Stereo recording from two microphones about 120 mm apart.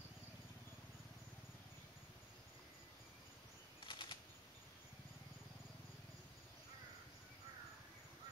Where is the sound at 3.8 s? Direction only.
40° left (ahead or behind).